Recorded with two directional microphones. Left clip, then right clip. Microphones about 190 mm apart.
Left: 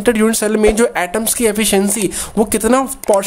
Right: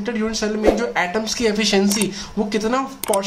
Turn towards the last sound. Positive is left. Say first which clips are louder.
# left 7 dB
turn(degrees=60)  # may be behind; listen again after turning